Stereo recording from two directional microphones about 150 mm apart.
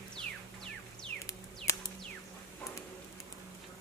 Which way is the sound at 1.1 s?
20° left (ahead or behind).